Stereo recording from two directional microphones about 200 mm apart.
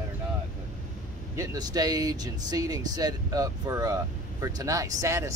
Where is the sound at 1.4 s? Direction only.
20° right (ahead or behind).